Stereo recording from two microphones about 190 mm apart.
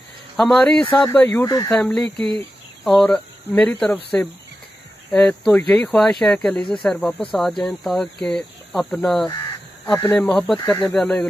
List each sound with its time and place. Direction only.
0.4 s speech: 5° left (ahead or behind)
9.8 s speech: 15° left (ahead or behind)